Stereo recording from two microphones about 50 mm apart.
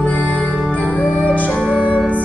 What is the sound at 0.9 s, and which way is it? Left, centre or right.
Music, left.